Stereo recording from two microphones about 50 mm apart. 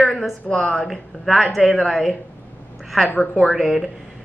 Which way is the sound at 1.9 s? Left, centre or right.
Centre.